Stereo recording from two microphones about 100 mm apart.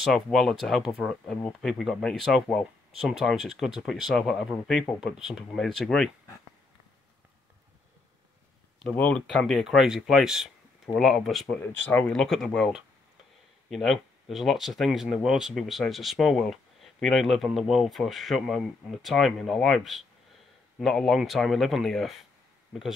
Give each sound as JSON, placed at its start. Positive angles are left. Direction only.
{"t": 0.0, "sound": "speech", "side_deg": 0}
{"t": 8.9, "sound": "speech", "side_deg": 15}
{"t": 11.6, "sound": "speech", "side_deg": 20}
{"t": 12.1, "sound": "speech", "side_deg": 5}